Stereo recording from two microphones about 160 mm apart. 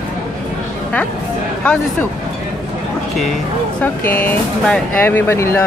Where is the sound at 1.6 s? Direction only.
10° left (ahead or behind).